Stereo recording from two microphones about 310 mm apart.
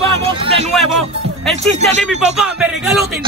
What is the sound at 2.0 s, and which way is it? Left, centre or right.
Speech, centre.